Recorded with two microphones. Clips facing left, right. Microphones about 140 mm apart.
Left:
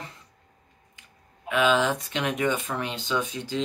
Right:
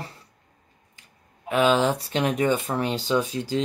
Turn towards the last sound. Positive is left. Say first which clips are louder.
# right 5 dB
turn(degrees=-35)  # may be behind; listen again after turning